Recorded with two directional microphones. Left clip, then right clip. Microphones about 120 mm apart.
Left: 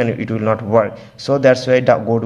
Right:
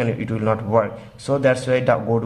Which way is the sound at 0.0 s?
25° left (ahead or behind).